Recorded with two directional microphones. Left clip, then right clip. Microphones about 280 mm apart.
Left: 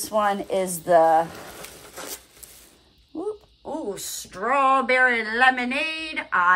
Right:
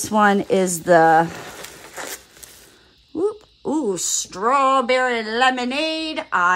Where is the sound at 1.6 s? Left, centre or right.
Centre.